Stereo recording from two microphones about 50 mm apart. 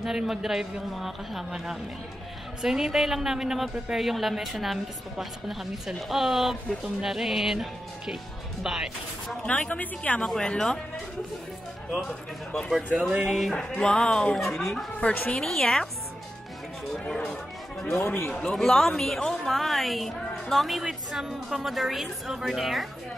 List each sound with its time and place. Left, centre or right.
0.0 s a man's voice: centre
2.6 s a woman's voice: centre
9.4 s a woman's voice: left
10.2 s speech: centre
12.1 s a woman's voice: centre
13.6 s speech: centre
14.4 s a woman's voice: centre
15.0 s a woman's voice: left
15.3 s speech: centre
16.9 s chatter: centre
18.3 s a woman's voice: centre